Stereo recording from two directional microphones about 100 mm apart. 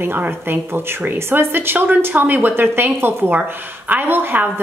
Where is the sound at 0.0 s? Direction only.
20° right (ahead or behind).